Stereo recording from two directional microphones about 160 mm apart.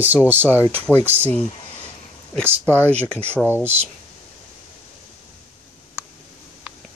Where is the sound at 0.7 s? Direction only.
10° left (ahead or behind).